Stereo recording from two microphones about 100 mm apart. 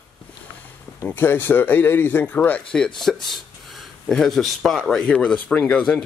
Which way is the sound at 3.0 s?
Centre (ahead or behind).